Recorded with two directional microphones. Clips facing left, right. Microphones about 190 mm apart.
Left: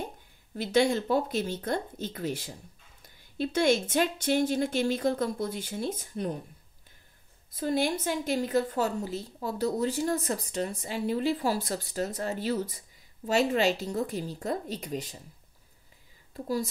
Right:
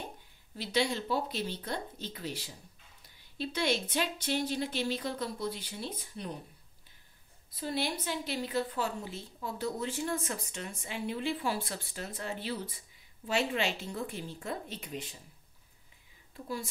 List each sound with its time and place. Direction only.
0.6 s a woman's voice: 50° left (ahead or behind)
7.5 s a woman's voice: 45° left (ahead or behind)
16.3 s speech: 40° left (ahead or behind)